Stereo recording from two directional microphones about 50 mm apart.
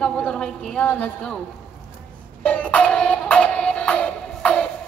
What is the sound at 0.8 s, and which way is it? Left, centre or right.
Speech, left.